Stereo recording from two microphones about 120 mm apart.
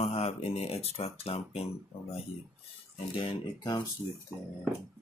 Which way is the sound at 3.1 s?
45° left (ahead or behind).